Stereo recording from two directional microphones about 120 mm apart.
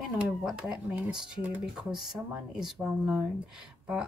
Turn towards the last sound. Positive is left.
turn(degrees=-10)  # may be behind; listen again after turning